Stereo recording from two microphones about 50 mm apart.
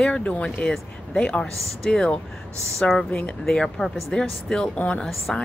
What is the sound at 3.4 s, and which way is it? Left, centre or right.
Speech, centre.